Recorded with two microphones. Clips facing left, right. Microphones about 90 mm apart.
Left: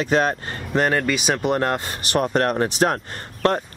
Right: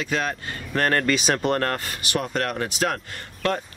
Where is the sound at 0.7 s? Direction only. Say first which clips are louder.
Left 2 dB; 10° left (ahead or behind).